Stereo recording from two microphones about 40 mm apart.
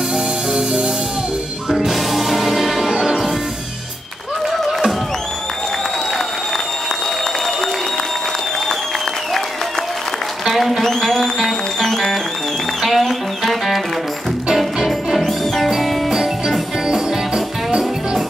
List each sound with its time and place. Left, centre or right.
0.5 s music: centre
10.4 s applause: centre
10.9 s a sound: centre
11.8 s music: centre
14.9 s music: centre
15.7 s music: centre